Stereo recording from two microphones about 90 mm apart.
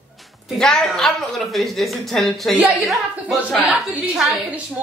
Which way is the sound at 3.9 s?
15° right (ahead or behind).